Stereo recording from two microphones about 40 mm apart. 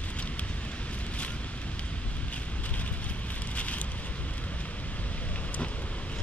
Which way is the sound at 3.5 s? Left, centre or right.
Left.